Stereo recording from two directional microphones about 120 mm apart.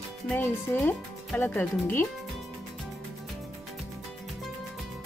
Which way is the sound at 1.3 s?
15° left (ahead or behind).